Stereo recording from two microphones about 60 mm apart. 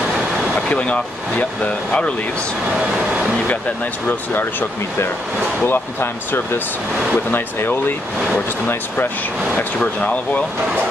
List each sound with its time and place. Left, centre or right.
0.7 s speech: centre
2.8 s speech: centre
4.3 s speech: left
5.7 s speech: left
9.8 s speech: left